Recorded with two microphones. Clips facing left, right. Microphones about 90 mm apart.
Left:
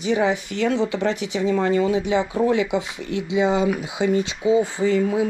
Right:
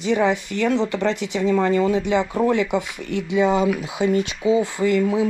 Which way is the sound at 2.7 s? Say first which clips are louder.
Right 1 dB; 55° right (ahead or behind).